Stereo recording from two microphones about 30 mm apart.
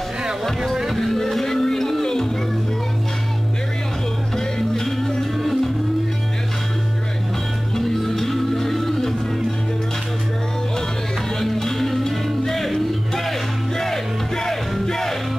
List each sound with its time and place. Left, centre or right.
0.2 s a sound: centre
0.8 s music: centre
4.6 s music: centre
7.7 s music: centre
11.3 s music: centre